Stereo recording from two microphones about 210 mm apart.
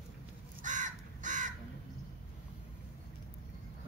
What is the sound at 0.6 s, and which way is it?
Crow, 35° right (ahead or behind).